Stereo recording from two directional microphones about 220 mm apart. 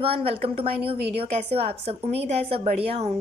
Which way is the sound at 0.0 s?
25° right (ahead or behind).